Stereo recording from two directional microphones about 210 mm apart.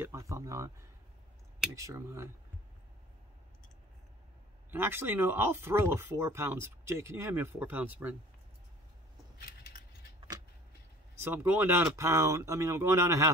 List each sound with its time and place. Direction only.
0.0 s speech: 15° right (ahead or behind)
1.8 s speech: 15° right (ahead or behind)
4.6 s speech: 10° right (ahead or behind)
9.4 s a sound: 45° left (ahead or behind)
11.2 s speech: 10° right (ahead or behind)